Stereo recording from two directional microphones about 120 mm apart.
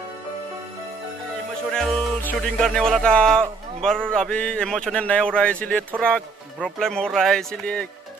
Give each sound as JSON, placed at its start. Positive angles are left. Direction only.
{"t": 1.7, "sound": "a man's voice", "side_deg": 5}